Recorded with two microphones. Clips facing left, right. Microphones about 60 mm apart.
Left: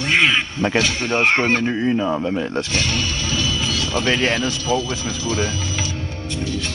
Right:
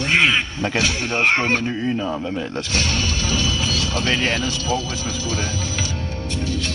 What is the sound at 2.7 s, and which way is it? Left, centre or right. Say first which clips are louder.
Speech: left 1 dB; left.